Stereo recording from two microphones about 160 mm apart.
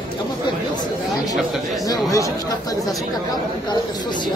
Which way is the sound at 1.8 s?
20° left (ahead or behind).